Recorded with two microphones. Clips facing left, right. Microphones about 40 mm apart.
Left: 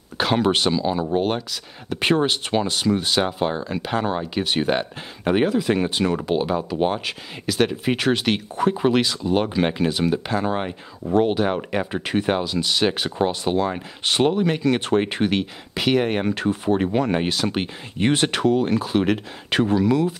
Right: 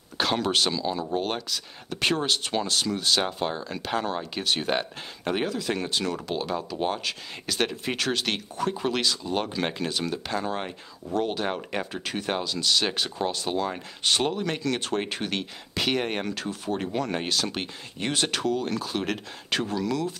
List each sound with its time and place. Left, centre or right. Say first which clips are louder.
0.2 s speech: left 5 dB; centre
7.4 s speech: left 7 dB; centre
7.9 s speech: left 7 dB; centre
11.4 s speech: left 6 dB; centre
16.3 s speech: left 9 dB; left